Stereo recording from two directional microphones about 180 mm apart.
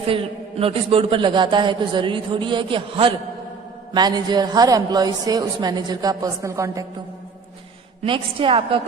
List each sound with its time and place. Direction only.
0.1 s a man's voice: 30° right (ahead or behind)
8.0 s a man's voice: 30° right (ahead or behind)